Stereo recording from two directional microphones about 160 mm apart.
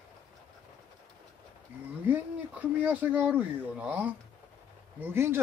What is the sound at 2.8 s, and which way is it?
Speech, 10° right (ahead or behind).